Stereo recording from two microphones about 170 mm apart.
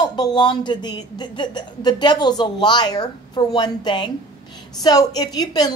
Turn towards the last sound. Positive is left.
turn(degrees=20)  # may be behind; listen again after turning